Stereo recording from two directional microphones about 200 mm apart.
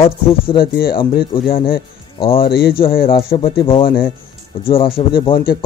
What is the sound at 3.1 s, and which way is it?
Speech, 25° left (ahead or behind).